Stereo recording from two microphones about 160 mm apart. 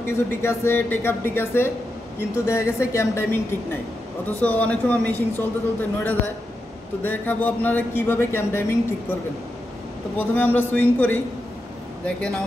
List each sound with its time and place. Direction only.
0.0 s a man's voice: 15° left (ahead or behind)
4.4 s a man's voice: 10° left (ahead or behind)
10.1 s a man's voice: 10° left (ahead or behind)